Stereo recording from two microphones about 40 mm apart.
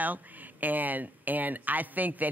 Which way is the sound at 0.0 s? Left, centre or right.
Right.